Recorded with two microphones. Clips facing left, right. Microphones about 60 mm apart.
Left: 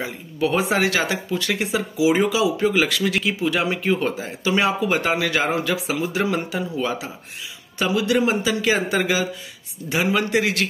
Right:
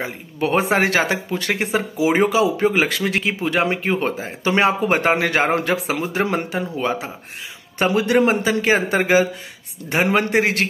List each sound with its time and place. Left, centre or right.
0.0 s speech: right